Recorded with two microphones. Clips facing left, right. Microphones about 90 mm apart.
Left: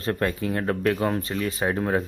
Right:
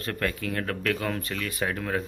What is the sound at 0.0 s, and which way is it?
Speech, 25° left (ahead or behind).